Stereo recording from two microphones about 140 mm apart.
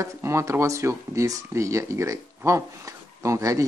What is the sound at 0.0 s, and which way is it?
Speech, 20° right (ahead or behind).